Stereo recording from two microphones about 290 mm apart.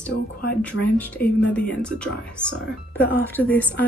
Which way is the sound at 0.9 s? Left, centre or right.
Centre.